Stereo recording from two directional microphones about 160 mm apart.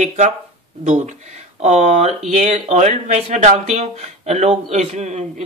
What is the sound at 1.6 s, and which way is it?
Speech, 45° right (ahead or behind).